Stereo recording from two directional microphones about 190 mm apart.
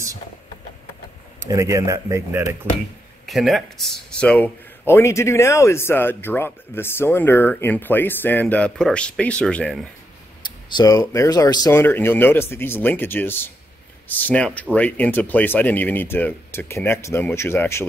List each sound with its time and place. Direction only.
1.4 s speech: 15° right (ahead or behind)
3.3 s a man's voice: centre (ahead or behind)
10.4 s a man's voice: 20° left (ahead or behind)